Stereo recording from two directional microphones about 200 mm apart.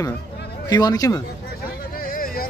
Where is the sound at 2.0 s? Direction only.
45° left (ahead or behind).